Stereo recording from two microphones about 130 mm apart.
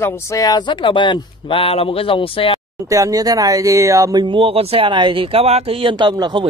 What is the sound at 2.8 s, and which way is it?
Speech, 25° right (ahead or behind).